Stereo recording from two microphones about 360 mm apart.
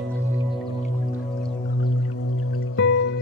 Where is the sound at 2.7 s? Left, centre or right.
Left.